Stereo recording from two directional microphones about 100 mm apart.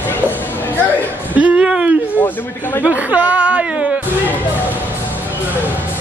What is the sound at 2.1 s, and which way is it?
Speech, 20° left (ahead or behind).